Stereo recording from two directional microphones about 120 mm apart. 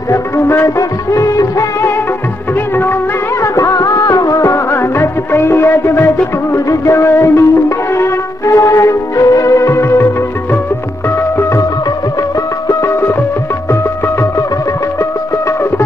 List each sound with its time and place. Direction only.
0.1 s music of bollywood: 20° left (ahead or behind)
6.5 s music: 25° left (ahead or behind)
12.6 s music: 25° left (ahead or behind)